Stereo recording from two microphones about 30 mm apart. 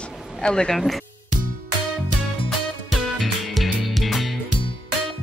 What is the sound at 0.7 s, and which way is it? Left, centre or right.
Speech, centre.